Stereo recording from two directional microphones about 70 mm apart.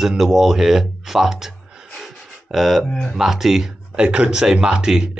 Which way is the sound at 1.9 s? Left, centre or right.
Centre.